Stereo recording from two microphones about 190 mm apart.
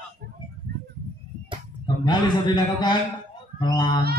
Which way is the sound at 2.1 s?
20° left (ahead or behind).